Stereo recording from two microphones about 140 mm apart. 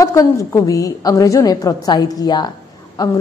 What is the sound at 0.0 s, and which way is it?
A woman's voice, 25° left (ahead or behind).